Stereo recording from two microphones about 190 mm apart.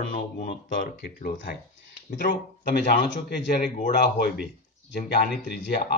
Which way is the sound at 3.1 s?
60° left (ahead or behind).